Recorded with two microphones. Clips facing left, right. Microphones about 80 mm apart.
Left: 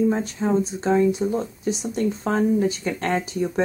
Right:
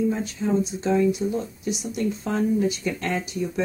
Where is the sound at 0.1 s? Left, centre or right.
Left.